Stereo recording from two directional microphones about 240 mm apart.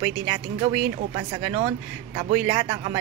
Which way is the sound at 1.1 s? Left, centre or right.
Right.